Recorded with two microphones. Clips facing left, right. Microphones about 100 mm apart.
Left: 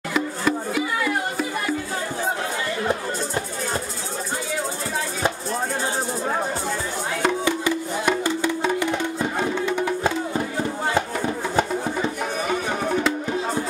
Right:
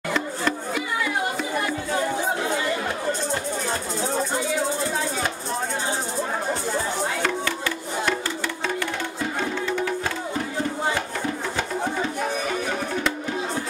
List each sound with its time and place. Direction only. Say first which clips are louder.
0.1 s music: left 3 dB; 5° left (ahead or behind)
7.2 s music: left 4 dB; 15° left (ahead or behind)